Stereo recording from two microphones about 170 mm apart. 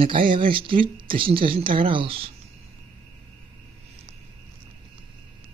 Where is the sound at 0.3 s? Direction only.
30° right (ahead or behind).